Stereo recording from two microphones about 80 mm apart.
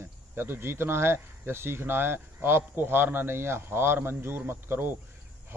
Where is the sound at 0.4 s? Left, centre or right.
Right.